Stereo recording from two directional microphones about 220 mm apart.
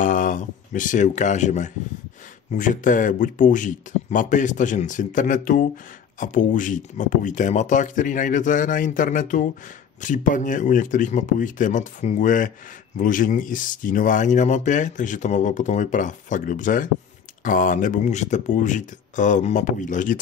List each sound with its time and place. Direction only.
0.0 s speech: 35° left (ahead or behind)